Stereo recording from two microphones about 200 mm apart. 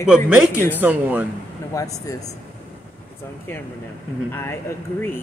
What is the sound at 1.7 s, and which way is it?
Speech, 15° left (ahead or behind).